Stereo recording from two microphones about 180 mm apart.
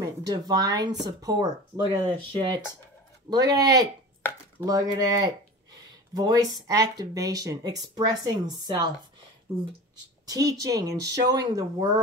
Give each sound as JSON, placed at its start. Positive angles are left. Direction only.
{"t": 0.0, "sound": "speech", "side_deg": -20}
{"t": 10.2, "sound": "speech", "side_deg": -20}